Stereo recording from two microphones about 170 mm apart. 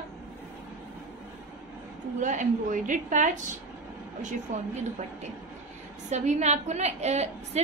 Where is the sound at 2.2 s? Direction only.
45° right (ahead or behind).